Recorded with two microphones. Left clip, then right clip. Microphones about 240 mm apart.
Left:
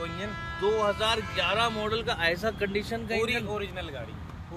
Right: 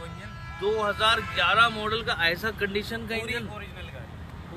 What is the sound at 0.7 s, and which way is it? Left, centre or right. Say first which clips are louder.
Speech: right 4 dB; centre.